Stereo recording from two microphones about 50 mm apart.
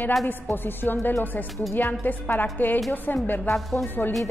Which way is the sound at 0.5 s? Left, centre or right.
Left.